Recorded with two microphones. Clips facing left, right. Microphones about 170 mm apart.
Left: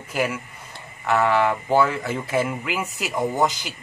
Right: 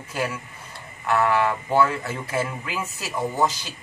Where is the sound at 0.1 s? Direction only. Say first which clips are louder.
Left 3 dB; 15° left (ahead or behind).